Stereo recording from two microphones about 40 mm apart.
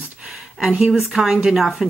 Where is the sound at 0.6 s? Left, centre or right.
Right; by 1.9 s centre.